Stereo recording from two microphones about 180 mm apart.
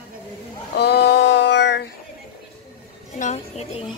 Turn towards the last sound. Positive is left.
turn(degrees=40)  # may be behind; listen again after turning